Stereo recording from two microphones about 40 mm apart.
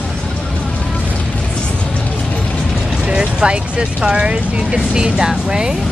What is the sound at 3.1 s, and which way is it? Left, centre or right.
Speech, right.